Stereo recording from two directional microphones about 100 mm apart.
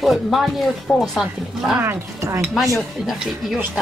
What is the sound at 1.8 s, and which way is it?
Stir, 25° right (ahead or behind).